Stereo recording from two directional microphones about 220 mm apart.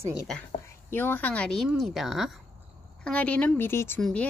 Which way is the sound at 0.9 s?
10° left (ahead or behind).